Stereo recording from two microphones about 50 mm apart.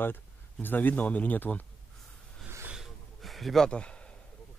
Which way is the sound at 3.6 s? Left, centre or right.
Left.